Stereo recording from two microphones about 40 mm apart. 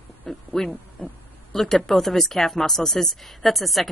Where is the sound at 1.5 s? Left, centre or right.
Centre.